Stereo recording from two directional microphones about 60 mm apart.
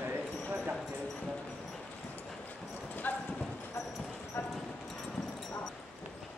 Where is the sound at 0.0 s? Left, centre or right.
Right.